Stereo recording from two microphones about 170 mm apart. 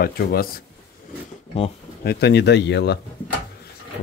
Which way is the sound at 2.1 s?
80° left.